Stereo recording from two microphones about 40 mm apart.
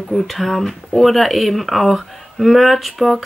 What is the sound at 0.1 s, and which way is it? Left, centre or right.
Speech, centre.